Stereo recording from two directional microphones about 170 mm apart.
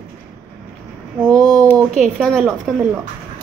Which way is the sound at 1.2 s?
5° left (ahead or behind).